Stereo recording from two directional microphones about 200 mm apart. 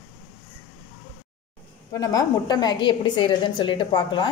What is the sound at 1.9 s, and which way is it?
A woman's voice, 20° left (ahead or behind).